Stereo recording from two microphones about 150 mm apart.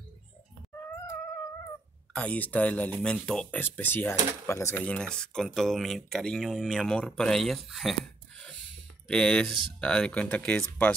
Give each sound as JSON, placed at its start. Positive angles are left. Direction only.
{"t": 2.1, "sound": "speech", "side_deg": 10}